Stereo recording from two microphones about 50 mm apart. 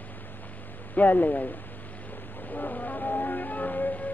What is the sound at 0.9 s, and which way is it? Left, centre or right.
Speech, left.